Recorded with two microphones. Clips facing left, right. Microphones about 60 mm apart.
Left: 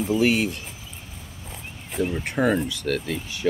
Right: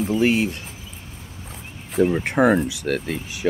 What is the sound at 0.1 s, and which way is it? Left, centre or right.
Speech, centre.